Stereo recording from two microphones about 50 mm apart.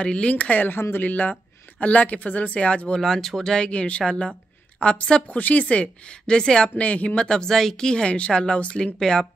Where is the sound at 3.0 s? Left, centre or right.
Centre.